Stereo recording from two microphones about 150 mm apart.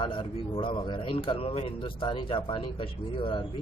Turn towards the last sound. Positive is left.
turn(degrees=35)  # may be behind; listen again after turning